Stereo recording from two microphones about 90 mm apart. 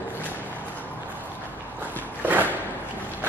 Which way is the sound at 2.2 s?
20° right (ahead or behind).